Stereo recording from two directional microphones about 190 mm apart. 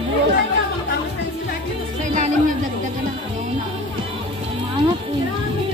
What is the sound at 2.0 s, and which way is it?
Music, 40° right (ahead or behind).